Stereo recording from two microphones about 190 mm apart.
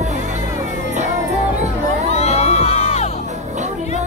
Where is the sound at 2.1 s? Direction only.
35° left (ahead or behind).